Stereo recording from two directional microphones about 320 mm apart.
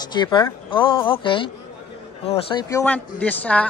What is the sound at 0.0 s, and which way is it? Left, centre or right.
A man's voice, centre.